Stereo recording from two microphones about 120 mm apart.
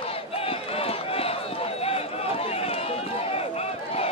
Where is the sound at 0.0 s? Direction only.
55° left (ahead or behind).